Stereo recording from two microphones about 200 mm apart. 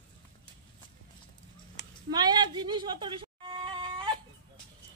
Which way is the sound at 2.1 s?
20° right (ahead or behind).